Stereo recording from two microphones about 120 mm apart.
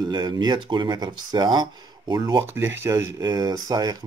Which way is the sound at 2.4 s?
20° right (ahead or behind).